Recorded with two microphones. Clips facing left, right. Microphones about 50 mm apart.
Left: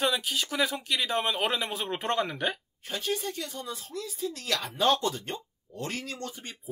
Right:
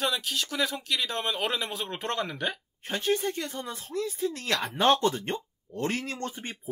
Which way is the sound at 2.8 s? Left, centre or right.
Right.